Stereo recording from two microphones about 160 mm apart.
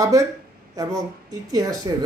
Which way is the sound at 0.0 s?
20° right (ahead or behind).